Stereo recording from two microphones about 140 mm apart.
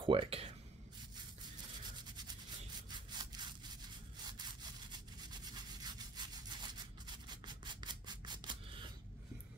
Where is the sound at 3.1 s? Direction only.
30° right (ahead or behind).